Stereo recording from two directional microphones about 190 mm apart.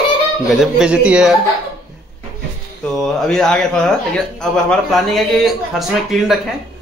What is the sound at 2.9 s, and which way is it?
A man's voice, centre (ahead or behind).